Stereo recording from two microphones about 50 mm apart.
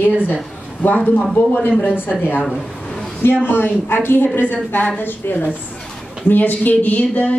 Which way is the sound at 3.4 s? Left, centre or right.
Left.